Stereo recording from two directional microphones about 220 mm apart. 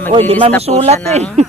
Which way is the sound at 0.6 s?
30° right (ahead or behind).